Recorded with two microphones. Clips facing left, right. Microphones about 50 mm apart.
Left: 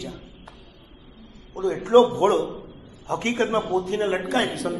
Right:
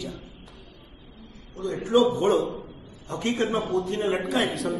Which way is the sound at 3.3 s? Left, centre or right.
Left.